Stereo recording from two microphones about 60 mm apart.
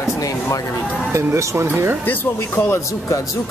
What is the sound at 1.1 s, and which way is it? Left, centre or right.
Speech, right.